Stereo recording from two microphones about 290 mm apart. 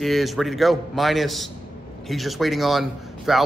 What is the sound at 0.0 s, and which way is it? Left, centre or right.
A man's voice, centre.